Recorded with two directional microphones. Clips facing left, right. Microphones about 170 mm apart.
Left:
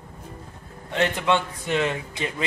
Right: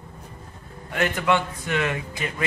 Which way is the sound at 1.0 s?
25° left (ahead or behind).